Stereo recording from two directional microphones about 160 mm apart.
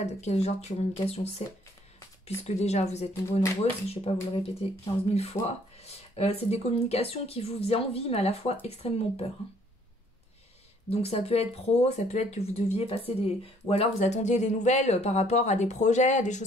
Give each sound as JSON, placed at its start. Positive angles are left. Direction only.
{"t": 0.0, "sound": "speech", "side_deg": 45}
{"t": 2.4, "sound": "speech", "side_deg": 45}
{"t": 10.9, "sound": "speech", "side_deg": 40}